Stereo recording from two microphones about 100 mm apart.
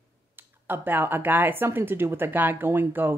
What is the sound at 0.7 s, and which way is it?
A woman's voice, 20° right (ahead or behind).